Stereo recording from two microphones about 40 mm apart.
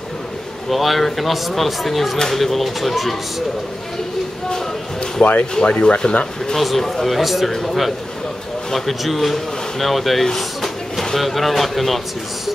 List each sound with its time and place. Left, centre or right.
0.7 s speech: centre
5.2 s speech: left
6.6 s speech: centre
10.2 s drawer open or close: centre
11.1 s speech: centre